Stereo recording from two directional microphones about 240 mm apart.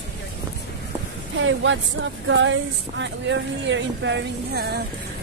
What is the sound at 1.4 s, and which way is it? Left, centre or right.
A woman's voice, right.